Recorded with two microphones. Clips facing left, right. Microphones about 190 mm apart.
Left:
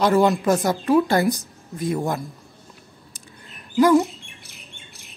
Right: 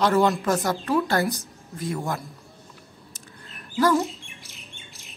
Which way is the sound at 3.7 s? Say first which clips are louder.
Left 5 dB; 15° left (ahead or behind).